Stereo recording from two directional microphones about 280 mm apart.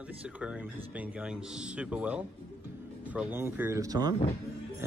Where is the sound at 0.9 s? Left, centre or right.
Centre.